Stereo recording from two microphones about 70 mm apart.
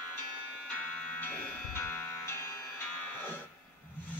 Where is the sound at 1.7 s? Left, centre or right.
Left.